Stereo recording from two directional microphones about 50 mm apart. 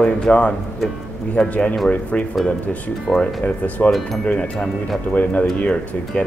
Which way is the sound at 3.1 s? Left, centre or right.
Centre.